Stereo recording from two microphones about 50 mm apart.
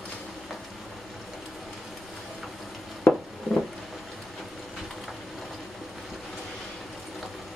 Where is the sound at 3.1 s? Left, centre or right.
Left.